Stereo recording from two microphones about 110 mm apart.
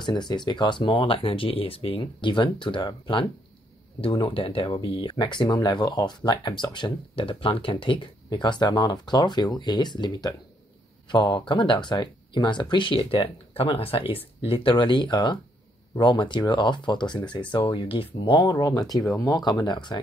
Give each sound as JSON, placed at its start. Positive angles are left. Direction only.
{"t": 0.0, "sound": "speech", "side_deg": 40}